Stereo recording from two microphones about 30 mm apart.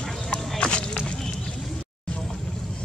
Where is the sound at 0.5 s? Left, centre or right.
Left.